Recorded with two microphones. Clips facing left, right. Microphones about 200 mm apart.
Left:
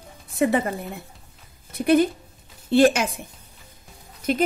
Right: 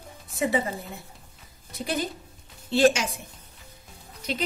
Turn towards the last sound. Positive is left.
turn(degrees=50)  # may be behind; listen again after turning